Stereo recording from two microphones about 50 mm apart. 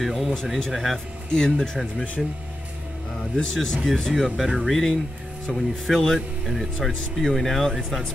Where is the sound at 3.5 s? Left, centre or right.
Centre.